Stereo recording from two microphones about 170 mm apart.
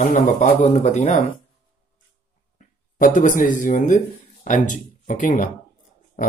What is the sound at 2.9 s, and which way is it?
Speech, 55° left (ahead or behind).